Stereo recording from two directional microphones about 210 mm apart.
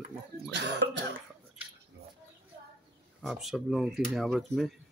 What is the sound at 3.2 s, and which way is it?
Speech, centre (ahead or behind).